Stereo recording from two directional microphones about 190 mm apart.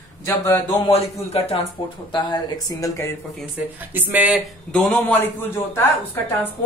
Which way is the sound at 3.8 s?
10° right (ahead or behind).